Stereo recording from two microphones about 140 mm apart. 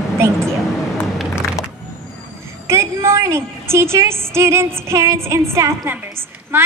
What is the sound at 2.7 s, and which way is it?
A woman's voice, 20° right (ahead or behind).